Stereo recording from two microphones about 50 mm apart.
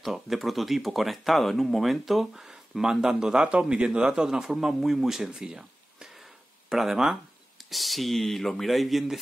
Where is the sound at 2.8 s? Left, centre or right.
Centre.